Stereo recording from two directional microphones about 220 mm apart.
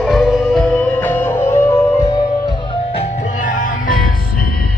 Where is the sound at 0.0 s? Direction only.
Centre (ahead or behind).